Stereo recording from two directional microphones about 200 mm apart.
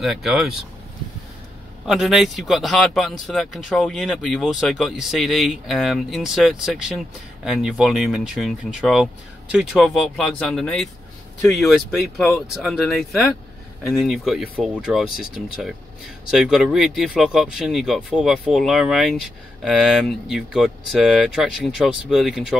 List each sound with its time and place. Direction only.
0.0 s speech: centre (ahead or behind)
1.9 s speech: centre (ahead or behind)